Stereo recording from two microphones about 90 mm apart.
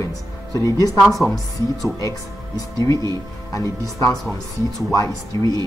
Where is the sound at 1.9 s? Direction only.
40° left (ahead or behind).